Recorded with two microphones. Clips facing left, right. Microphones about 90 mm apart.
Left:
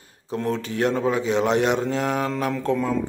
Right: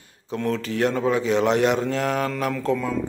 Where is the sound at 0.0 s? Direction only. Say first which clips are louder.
Even; 30° left (ahead or behind).